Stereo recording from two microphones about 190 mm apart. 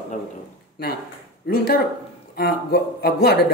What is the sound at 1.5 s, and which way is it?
A woman's voice, 50° left (ahead or behind).